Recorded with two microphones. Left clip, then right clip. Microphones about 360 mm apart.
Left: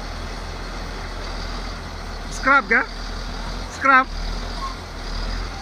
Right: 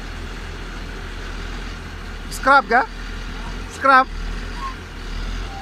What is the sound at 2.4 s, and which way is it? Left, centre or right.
Speech, centre.